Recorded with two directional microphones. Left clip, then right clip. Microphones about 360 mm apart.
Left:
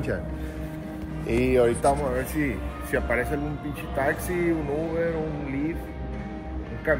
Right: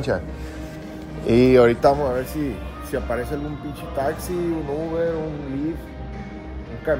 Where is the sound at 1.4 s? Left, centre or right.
Right.